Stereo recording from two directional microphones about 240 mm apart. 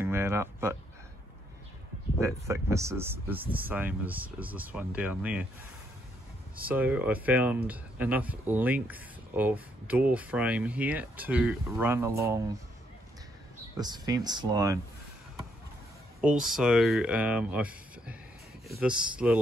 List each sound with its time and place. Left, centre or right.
0.0 s a sound: centre
2.1 s speech: centre
6.5 s speech: centre
13.7 s speech: centre
16.2 s speech: centre